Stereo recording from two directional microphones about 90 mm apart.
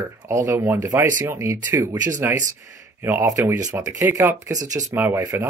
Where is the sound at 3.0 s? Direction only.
25° right (ahead or behind).